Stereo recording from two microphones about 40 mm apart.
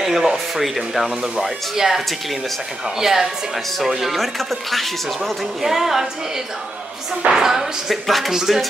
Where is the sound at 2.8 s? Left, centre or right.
Centre.